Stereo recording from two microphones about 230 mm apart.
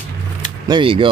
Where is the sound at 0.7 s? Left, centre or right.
Right.